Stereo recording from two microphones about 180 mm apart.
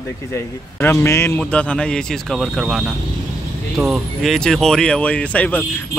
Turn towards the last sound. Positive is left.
turn(degrees=10)  # may be behind; listen again after turning